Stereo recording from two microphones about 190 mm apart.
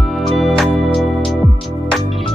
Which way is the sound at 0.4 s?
Centre (ahead or behind).